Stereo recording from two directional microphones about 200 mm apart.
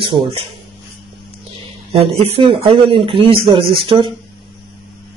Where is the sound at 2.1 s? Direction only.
30° right (ahead or behind).